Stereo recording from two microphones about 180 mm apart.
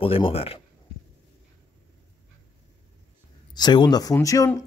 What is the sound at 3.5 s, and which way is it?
Speech, 25° left (ahead or behind).